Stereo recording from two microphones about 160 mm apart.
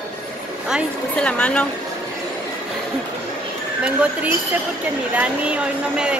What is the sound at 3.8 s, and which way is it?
Speech, 10° right (ahead or behind).